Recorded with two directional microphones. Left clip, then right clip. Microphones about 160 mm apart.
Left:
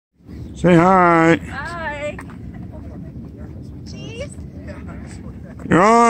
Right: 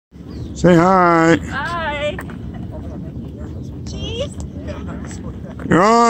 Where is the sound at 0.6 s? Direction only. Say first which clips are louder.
Right 1 dB; 10° left (ahead or behind).